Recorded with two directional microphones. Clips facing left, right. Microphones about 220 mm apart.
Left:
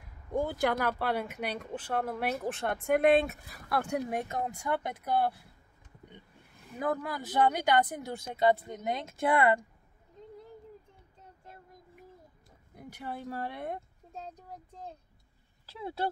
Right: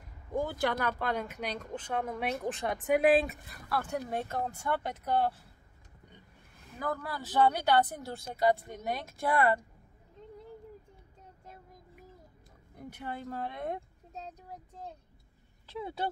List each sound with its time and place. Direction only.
0.3 s speech: 15° left (ahead or behind)
3.7 s speech: 15° left (ahead or behind)
6.8 s speech: 20° left (ahead or behind)
12.7 s speech: 10° left (ahead or behind)
15.6 s speech: 5° left (ahead or behind)